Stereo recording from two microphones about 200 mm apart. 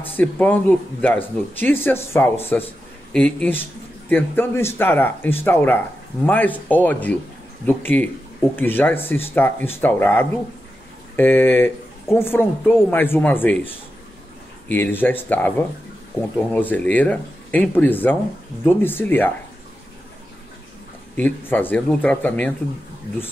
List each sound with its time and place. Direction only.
0.2 s speech: 10° left (ahead or behind)
21.2 s speech: 10° left (ahead or behind)